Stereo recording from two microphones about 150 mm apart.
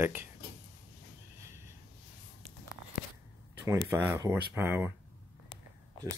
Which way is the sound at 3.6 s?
20° right (ahead or behind).